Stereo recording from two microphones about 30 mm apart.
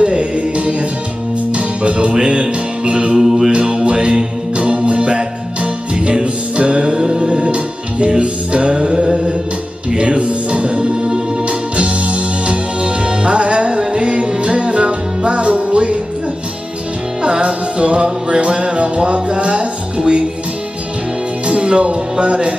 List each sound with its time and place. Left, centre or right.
0.0 s music: right
3.2 s music: centre
3.5 s music: right
4.6 s music: right
8.7 s music: right
9.8 s music: right
17.2 s music: right
21.5 s music: right